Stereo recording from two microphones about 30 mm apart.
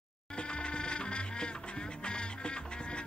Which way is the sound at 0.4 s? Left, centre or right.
Left.